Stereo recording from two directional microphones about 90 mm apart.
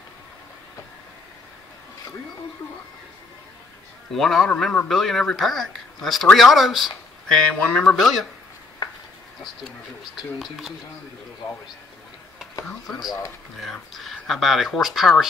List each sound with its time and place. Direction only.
4.1 s speech: centre (ahead or behind)
8.8 s a sound: 45° left (ahead or behind)
10.4 s speech: centre (ahead or behind)
13.6 s speech: centre (ahead or behind)